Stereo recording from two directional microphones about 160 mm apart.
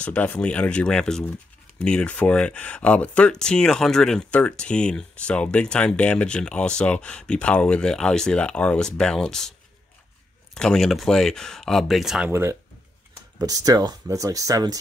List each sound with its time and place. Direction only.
0.0 s speech: 10° left (ahead or behind)
10.5 s speech: 5° left (ahead or behind)
12.3 s speech: 15° right (ahead or behind)